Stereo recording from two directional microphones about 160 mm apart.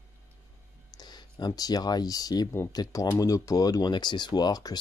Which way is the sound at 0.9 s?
25° left (ahead or behind).